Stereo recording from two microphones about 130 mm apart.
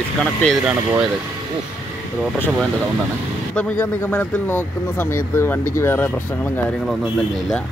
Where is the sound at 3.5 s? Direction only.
15° left (ahead or behind).